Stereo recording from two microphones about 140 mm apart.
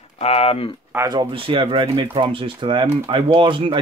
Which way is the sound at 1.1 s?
35° right (ahead or behind).